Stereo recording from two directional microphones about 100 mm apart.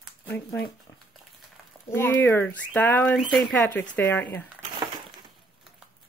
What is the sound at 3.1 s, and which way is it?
Speech, centre (ahead or behind).